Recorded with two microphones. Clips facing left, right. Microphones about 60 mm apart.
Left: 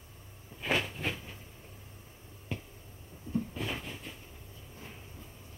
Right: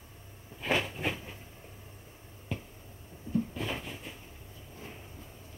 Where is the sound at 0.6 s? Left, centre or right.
Centre.